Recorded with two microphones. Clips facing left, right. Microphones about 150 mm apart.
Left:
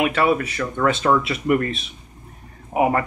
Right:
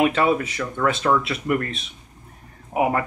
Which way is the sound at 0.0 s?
25° right (ahead or behind).